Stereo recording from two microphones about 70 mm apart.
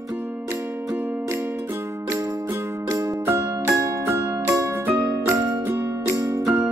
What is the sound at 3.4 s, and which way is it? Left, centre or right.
Music, right.